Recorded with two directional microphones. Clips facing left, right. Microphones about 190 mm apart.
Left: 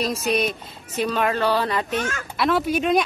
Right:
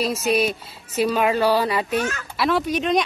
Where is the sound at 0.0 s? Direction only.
5° right (ahead or behind).